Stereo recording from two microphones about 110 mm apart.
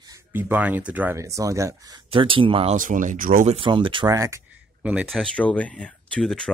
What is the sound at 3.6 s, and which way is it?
Speech, 50° right (ahead or behind).